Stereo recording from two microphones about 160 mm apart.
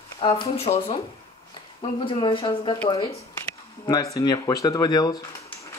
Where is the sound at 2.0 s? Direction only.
30° left (ahead or behind).